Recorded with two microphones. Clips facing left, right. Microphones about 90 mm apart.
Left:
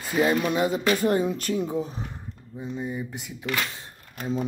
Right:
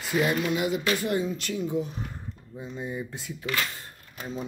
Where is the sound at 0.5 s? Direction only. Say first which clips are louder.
Left 3 dB; 35° left (ahead or behind).